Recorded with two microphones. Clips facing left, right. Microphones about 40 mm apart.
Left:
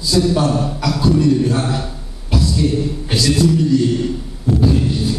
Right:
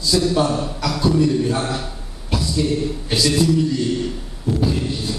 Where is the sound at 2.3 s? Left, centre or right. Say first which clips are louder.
Left 4 dB; centre.